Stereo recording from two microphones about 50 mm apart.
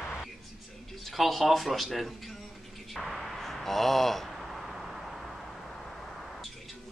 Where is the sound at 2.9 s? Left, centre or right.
Centre.